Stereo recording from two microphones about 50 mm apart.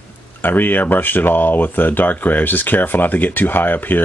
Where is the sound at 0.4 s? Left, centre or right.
Left.